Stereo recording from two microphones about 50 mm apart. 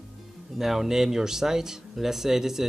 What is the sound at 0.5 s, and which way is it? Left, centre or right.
Speech, centre.